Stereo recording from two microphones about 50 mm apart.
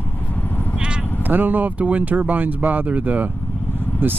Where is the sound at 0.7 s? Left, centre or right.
Centre.